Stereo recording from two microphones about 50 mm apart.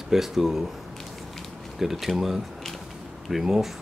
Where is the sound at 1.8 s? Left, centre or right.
Centre.